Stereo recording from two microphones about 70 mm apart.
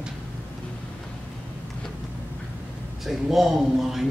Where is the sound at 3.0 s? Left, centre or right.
Centre.